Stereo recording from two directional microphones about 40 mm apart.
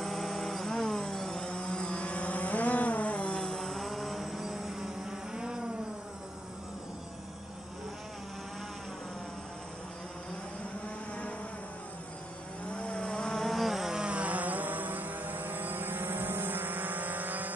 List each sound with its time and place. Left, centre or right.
0.0 s music: centre
1.6 s vehicle: left
3.3 s vehicle: centre
12.7 s vehicle: left
13.3 s insect: centre
13.9 s vehicle: right